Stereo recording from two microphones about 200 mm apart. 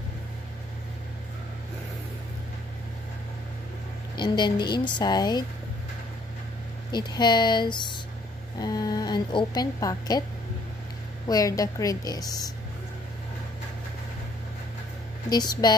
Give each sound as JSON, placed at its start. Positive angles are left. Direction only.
{"t": 4.2, "sound": "a woman's voice", "side_deg": 20}
{"t": 6.9, "sound": "a woman's voice", "side_deg": 20}
{"t": 11.2, "sound": "a woman's voice", "side_deg": 15}
{"t": 15.2, "sound": "a woman's voice", "side_deg": 20}